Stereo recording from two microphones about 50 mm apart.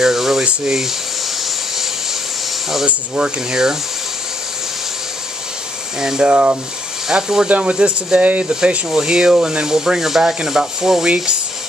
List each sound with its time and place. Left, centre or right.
0.0 s a sound: centre
2.9 s speech: right
3.4 s speech: centre
5.9 s speech: centre
6.2 s speech: right
7.1 s speech: centre
7.4 s speech: right
7.7 s speech: centre
8.2 s speech: right